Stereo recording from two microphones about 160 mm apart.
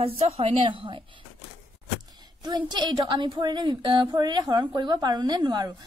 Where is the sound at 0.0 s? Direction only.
35° right (ahead or behind).